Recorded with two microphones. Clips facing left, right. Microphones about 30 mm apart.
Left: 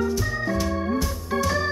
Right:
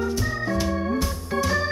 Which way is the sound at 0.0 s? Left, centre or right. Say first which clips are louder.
Left 1 dB; centre.